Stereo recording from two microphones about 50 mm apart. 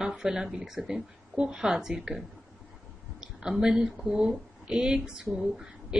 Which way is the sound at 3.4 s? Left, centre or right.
Centre.